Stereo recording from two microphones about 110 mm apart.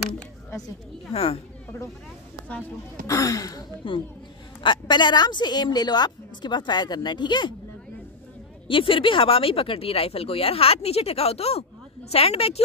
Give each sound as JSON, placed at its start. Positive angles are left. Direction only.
{"t": 1.1, "sound": "speech", "side_deg": 65}
{"t": 3.1, "sound": "a woman's voice", "side_deg": 30}
{"t": 3.8, "sound": "a woman's voice", "side_deg": 50}
{"t": 8.6, "sound": "speech", "side_deg": 50}